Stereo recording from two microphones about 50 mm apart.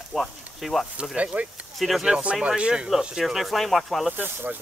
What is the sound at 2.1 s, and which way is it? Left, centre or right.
Speech, right.